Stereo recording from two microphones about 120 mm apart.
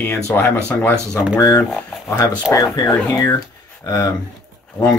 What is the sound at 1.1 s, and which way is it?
Speech, 30° left (ahead or behind).